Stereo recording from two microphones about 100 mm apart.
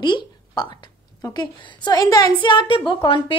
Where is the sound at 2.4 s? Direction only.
55° left (ahead or behind).